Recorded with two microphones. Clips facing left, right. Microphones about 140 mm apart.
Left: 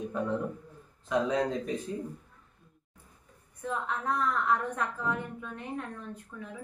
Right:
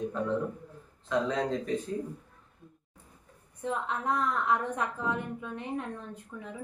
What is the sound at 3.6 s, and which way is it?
A woman's voice, 20° right (ahead or behind).